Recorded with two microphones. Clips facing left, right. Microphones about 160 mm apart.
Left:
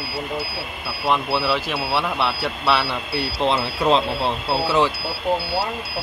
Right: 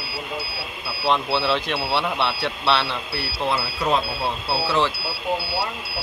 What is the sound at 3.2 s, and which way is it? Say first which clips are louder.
Speech: left 4 dB; 25° left (ahead or behind).